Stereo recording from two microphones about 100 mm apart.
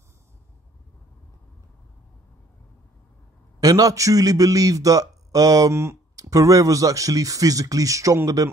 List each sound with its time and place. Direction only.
3.6 s speech: 40° right (ahead or behind)